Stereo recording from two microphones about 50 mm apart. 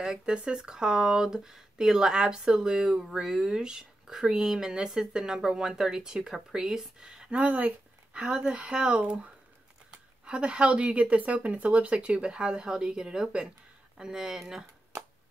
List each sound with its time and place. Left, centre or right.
0.0 s speech: centre
7.2 s speech: right
8.1 s speech: centre